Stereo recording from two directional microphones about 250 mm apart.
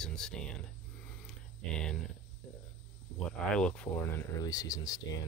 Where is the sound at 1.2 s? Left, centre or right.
Centre.